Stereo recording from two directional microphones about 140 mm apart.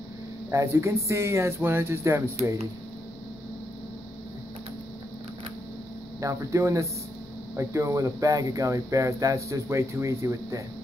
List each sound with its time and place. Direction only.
0.5 s speech: 20° right (ahead or behind)
6.2 s speech: 20° right (ahead or behind)